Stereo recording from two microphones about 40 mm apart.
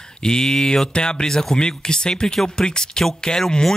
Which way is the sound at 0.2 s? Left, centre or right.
Centre.